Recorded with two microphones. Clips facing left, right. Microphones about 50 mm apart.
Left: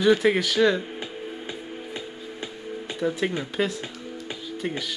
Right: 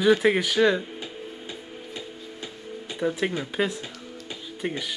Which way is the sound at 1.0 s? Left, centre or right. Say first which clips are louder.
Left 3 dB; left.